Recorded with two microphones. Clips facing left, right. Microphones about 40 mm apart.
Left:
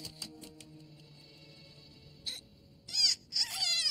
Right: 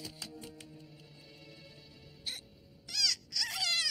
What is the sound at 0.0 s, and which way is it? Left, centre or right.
Music, centre.